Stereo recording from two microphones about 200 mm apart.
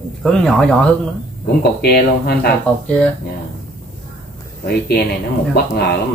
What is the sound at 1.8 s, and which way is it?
Speech, 55° left (ahead or behind).